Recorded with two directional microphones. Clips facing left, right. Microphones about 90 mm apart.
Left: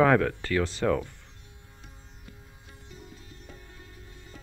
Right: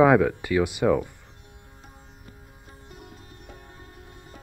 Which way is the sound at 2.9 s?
60° right (ahead or behind).